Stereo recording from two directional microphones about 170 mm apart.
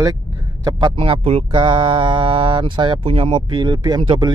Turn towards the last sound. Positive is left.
turn(degrees=-25)  # may be behind; listen again after turning